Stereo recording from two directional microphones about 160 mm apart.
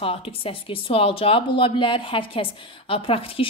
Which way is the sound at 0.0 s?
35° left (ahead or behind).